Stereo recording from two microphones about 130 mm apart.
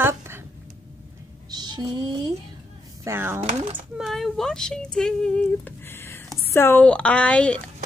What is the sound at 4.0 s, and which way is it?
A woman's voice, centre (ahead or behind).